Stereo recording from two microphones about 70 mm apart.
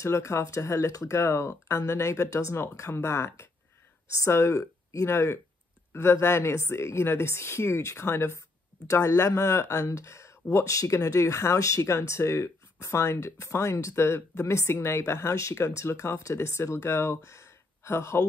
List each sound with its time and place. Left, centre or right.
0.0 s speech: left